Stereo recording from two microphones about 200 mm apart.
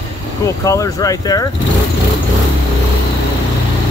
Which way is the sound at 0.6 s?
15° left (ahead or behind).